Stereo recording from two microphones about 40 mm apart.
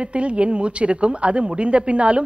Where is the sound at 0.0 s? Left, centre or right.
Right.